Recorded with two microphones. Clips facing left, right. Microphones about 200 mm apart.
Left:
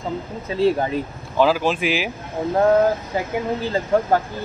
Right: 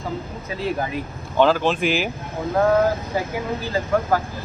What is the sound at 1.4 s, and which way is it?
Speech, 5° left (ahead or behind).